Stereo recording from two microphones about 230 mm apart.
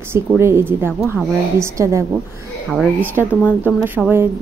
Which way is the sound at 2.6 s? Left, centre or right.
Centre.